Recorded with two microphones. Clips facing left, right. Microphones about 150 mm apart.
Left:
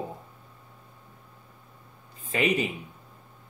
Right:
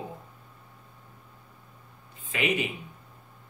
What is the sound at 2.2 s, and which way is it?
Speech, 35° left (ahead or behind).